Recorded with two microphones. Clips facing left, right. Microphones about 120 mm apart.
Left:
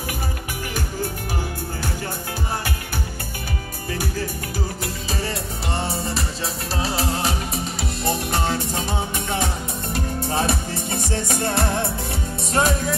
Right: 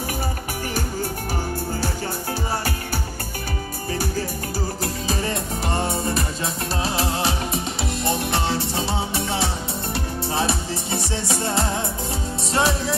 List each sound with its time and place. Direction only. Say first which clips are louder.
6.1 s music: right 2 dB; 35° left (ahead or behind); by 11.9 s 60° left (ahead or behind)
12.5 s music: left 1 dB; 45° left (ahead or behind)